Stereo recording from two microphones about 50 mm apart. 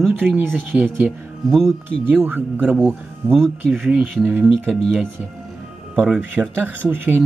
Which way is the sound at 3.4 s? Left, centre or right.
Centre.